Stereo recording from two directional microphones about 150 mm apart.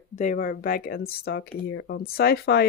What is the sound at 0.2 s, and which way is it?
Speech, 60° left (ahead or behind).